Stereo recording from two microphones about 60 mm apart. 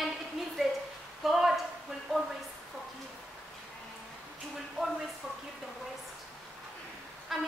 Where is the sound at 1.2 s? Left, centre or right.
Centre.